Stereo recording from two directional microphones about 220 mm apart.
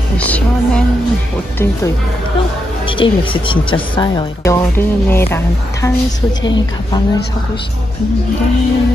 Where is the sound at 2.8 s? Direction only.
25° left (ahead or behind).